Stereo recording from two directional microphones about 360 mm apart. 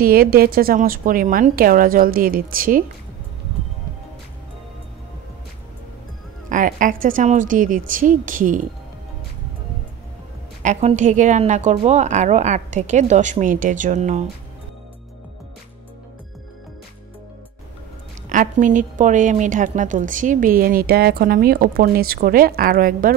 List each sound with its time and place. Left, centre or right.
0.0 s a woman's voice: right
6.5 s a woman's voice: right
10.6 s a woman's voice: centre
18.3 s a woman's voice: right